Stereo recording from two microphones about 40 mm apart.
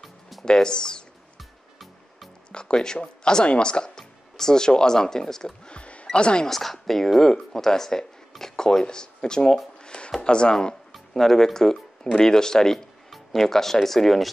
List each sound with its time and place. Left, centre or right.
0.0 s music: centre
0.5 s speech: centre
2.5 s speech: centre
5.7 s music: left
6.0 s speech: left
6.4 s speech: centre
9.8 s a sound: left
10.2 s speech: left
10.9 s speech: centre